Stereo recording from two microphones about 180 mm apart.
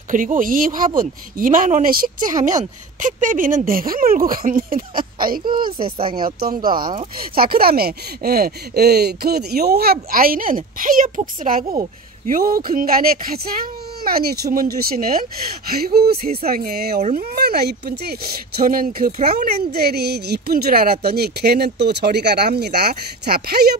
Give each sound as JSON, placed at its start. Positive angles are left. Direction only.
{"t": 0.1, "sound": "speech", "side_deg": -50}
{"t": 5.9, "sound": "speech", "side_deg": -30}
{"t": 6.1, "sound": "speech", "side_deg": -55}